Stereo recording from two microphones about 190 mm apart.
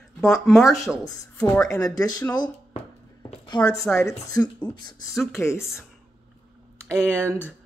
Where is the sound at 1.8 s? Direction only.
20° left (ahead or behind).